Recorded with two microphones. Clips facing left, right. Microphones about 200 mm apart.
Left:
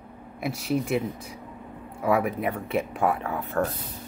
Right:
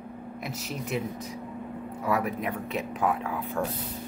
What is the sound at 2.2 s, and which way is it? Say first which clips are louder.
Speech: left 3 dB; 5° left (ahead or behind).